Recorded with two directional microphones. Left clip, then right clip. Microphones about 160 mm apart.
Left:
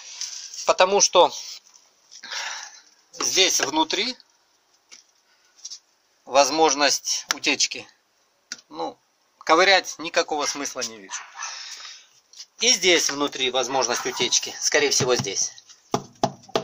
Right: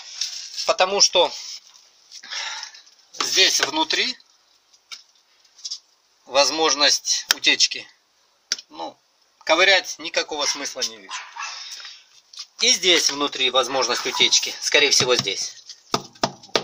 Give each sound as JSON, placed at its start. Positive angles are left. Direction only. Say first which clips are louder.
{"t": 0.7, "sound": "speech", "louder": "even", "side_deg": 10}
{"t": 2.2, "sound": "dog", "louder": "right 1 dB", "side_deg": 10}
{"t": 3.2, "sound": "speech", "louder": "right 2 dB", "side_deg": 5}
{"t": 6.2, "sound": "speech", "louder": "left 1 dB", "side_deg": 10}
{"t": 9.4, "sound": "speech", "louder": "even", "side_deg": 15}
{"t": 11.1, "sound": "dog", "louder": "right 2 dB", "side_deg": 25}
{"t": 12.5, "sound": "speech", "louder": "right 1 dB", "side_deg": 0}